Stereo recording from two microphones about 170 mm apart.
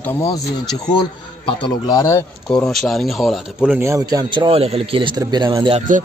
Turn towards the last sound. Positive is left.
turn(degrees=-25)  # may be behind; listen again after turning